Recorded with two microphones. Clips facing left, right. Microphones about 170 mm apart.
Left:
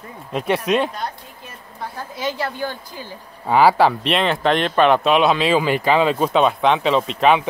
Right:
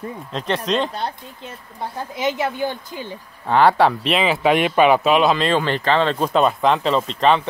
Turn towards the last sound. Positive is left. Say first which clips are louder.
# left 1 dB
turn(degrees=5)  # may be behind; listen again after turning